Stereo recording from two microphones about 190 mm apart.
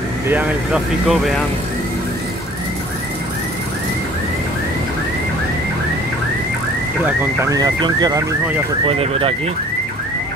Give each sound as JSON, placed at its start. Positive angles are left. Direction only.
{"t": 7.4, "sound": "car alarm", "side_deg": -20}